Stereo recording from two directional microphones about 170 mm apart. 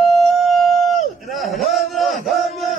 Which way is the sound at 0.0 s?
Centre (ahead or behind).